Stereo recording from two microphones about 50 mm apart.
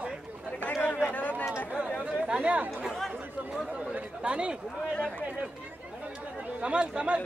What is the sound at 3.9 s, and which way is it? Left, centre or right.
Chatter, right.